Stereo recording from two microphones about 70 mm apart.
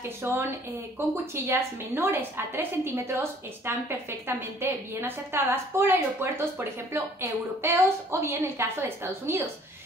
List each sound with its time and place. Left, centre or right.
0.2 s a woman's voice: right